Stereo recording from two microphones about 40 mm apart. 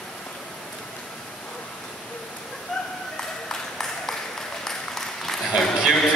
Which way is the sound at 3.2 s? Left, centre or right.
Centre.